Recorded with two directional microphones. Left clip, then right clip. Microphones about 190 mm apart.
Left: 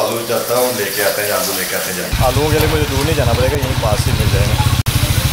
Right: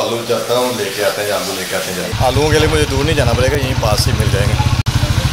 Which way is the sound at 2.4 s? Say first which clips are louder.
Right 2 dB; 10° right (ahead or behind).